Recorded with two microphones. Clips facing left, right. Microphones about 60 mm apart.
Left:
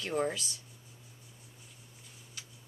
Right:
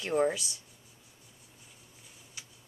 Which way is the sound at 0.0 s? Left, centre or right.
Centre.